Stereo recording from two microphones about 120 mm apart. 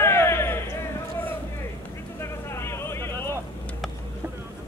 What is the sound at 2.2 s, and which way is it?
Vehicle, 20° left (ahead or behind).